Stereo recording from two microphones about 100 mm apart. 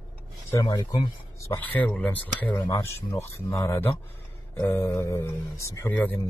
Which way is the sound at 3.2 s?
30° left (ahead or behind).